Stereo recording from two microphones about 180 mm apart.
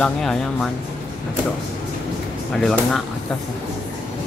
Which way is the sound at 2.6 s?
Centre (ahead or behind).